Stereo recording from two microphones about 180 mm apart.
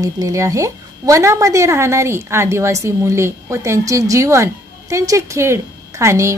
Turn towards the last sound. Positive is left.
turn(degrees=-15)  # may be behind; listen again after turning